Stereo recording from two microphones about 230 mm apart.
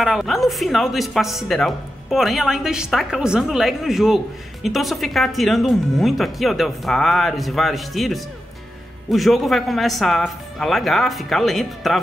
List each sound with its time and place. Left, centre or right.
0.0 s speech: centre